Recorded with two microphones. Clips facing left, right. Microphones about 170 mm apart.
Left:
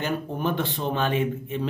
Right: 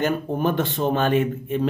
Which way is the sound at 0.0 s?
45° right (ahead or behind).